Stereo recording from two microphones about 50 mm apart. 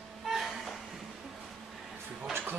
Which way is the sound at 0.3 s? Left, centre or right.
Centre.